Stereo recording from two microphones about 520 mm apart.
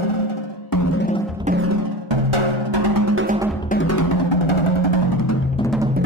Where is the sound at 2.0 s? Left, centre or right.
Right.